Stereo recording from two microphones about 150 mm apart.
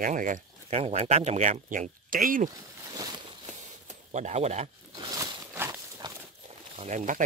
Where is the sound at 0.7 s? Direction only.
45° right (ahead or behind); by 2.5 s 65° right (ahead or behind).